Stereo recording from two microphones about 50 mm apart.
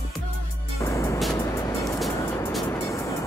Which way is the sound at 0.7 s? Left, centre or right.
Left.